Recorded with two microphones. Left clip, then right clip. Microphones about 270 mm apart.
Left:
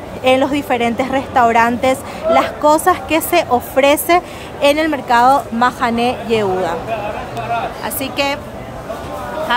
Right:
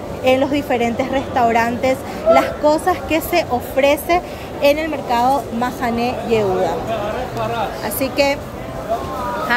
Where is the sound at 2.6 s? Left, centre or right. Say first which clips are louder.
Left 3 dB; left.